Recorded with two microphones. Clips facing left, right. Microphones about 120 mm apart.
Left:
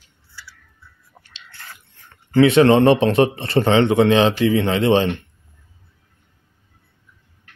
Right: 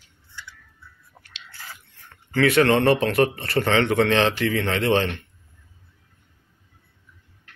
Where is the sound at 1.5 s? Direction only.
5° right (ahead or behind).